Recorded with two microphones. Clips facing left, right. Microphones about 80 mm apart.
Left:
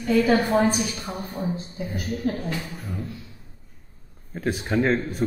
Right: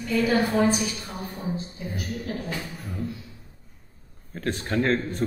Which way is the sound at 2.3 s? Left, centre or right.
Left.